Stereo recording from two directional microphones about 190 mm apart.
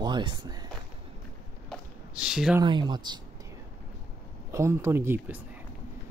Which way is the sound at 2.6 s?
25° right (ahead or behind).